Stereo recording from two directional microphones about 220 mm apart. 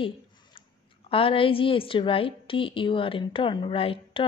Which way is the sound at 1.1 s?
25° left (ahead or behind).